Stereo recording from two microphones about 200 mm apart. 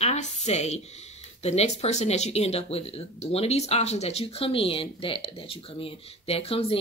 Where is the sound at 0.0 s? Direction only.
35° left (ahead or behind).